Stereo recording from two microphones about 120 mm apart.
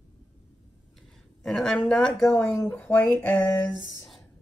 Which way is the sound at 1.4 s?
5° left (ahead or behind).